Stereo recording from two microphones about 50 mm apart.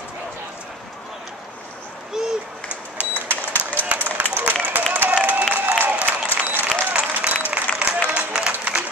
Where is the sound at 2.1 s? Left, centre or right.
Centre.